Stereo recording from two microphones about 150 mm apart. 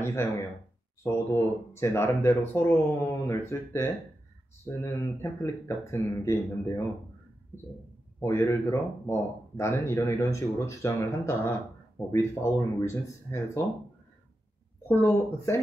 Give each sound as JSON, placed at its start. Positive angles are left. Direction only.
{"t": 0.0, "sound": "speech", "side_deg": 15}
{"t": 14.9, "sound": "speech", "side_deg": 15}